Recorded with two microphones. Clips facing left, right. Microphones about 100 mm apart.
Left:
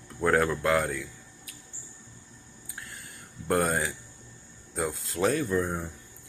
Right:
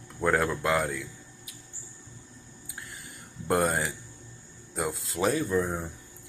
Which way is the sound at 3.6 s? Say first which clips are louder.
Even; centre (ahead or behind).